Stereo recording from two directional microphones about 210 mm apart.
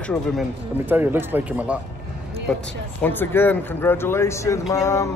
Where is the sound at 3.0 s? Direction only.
10° left (ahead or behind).